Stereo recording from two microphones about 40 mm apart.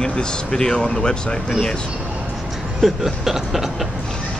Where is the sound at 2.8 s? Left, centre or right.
Centre.